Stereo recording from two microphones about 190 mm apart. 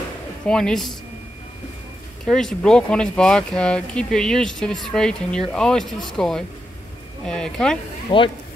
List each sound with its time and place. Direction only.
0.5 s speech: 5° left (ahead or behind)
2.2 s speech: 5° left (ahead or behind)
8.1 s speech: 25° left (ahead or behind)